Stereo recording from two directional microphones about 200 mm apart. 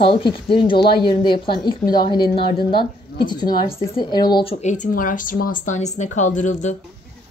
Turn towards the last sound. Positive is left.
turn(degrees=35)  # may be behind; listen again after turning